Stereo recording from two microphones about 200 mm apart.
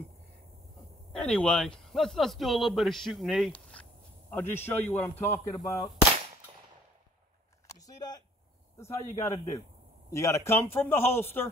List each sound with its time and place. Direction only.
1.1 s speech: 5° left (ahead or behind)
7.6 s a sound: 20° left (ahead or behind)
8.7 s speech: 15° left (ahead or behind)